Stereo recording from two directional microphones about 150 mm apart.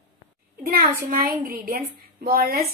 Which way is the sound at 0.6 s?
80° right.